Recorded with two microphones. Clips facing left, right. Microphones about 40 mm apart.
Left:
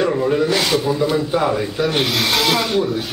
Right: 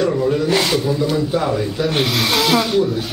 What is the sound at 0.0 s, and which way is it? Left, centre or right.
Snake, centre.